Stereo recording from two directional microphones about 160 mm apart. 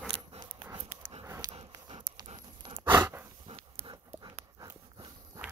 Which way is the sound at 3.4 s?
35° right (ahead or behind).